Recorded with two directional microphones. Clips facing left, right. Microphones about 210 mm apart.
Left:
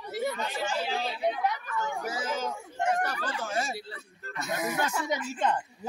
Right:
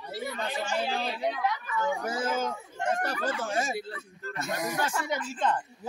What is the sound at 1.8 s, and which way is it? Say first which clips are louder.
Speech: right 5 dB; 55° right (ahead or behind).